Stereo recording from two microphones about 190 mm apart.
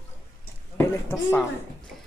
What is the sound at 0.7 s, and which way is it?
Speech, 10° left (ahead or behind).